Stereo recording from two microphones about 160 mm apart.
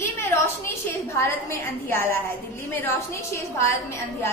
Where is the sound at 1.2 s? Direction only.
15° left (ahead or behind).